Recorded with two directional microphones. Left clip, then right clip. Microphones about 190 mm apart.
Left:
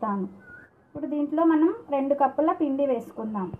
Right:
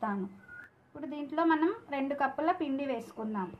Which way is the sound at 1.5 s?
25° left (ahead or behind).